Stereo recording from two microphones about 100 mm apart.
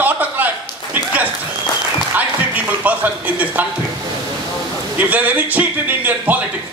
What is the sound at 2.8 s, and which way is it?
Speech, 15° right (ahead or behind).